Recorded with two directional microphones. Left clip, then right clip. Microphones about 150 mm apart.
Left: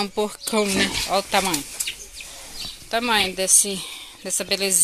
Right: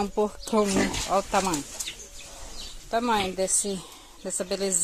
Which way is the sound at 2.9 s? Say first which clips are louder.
Left 4 dB; 5° right (ahead or behind).